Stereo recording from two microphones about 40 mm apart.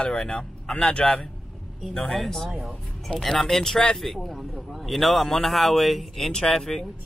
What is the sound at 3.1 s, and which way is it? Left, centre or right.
Speech, centre.